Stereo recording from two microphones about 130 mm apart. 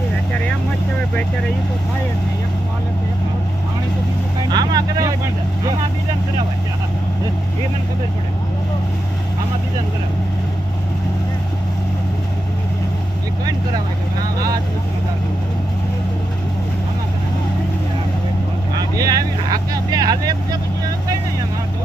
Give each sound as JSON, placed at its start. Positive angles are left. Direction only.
{"t": 4.5, "sound": "vehicle", "side_deg": -30}
{"t": 18.9, "sound": "vehicle", "side_deg": -30}